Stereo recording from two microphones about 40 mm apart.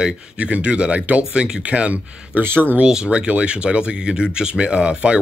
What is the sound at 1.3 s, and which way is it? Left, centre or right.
Speech, right.